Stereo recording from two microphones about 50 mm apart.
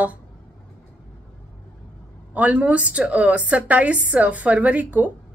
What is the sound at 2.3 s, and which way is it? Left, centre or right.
A woman's voice, right.